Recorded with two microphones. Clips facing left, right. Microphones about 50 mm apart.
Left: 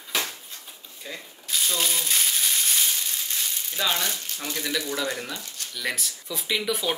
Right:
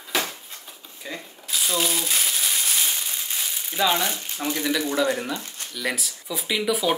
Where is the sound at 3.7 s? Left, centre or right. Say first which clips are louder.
Right 5 dB; centre.